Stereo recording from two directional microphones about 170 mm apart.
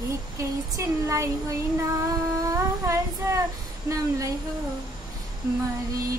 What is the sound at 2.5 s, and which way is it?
Child singing, 15° right (ahead or behind).